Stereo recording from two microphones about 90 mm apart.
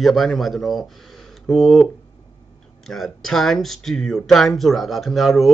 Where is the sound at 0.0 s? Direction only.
Centre (ahead or behind).